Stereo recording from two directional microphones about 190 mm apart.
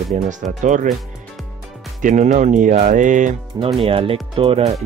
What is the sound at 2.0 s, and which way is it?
Speech, 40° right (ahead or behind).